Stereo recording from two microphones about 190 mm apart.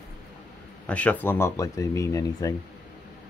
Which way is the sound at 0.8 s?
5° left (ahead or behind).